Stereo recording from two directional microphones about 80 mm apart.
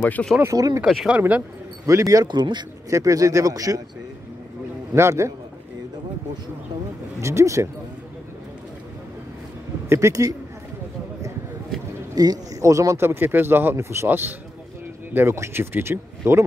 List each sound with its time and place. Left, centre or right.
0.0 s speech: centre
0.5 s a man's voice: right
1.9 s a man's voice: right
2.2 s a man's voice: right
2.9 s a man's voice: right
4.9 s speech: right
7.2 s speech: right
9.8 s speech: right
12.2 s a man's voice: right
13.0 s speech: right